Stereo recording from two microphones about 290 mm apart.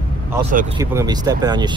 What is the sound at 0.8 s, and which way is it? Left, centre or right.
Speech, centre.